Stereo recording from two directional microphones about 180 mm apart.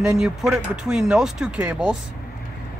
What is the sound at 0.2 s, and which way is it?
Speech, 5° right (ahead or behind).